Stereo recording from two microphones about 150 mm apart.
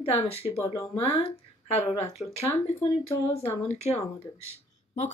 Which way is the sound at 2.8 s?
40° left (ahead or behind).